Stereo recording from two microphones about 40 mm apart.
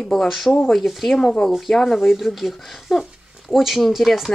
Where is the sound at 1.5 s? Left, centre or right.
Centre.